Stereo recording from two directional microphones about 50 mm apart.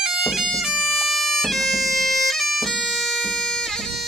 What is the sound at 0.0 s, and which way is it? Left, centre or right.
Bagpipes, centre.